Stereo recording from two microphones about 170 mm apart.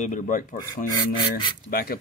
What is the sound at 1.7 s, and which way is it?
Speech, 60° left (ahead or behind).